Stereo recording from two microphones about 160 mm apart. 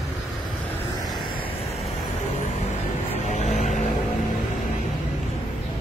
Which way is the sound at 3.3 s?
45° left (ahead or behind).